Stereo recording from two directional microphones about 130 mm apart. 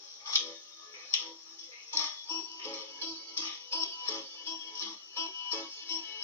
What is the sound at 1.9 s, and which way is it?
Music, 20° left (ahead or behind).